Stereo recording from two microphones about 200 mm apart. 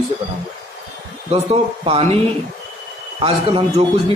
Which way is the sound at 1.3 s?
30° right (ahead or behind).